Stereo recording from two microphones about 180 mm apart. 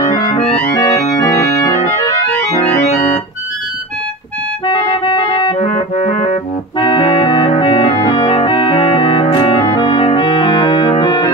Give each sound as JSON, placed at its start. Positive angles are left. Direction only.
{"t": 0.1, "sound": "music", "side_deg": 30}
{"t": 4.6, "sound": "clarinet", "side_deg": 30}
{"t": 6.8, "sound": "organ", "side_deg": 25}